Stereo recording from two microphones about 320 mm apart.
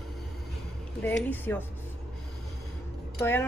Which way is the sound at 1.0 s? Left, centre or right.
Centre.